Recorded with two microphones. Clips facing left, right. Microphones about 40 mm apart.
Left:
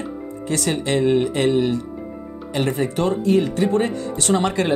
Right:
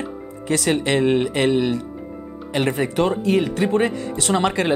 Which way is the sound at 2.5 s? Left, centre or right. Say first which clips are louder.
Right 1 dB; right.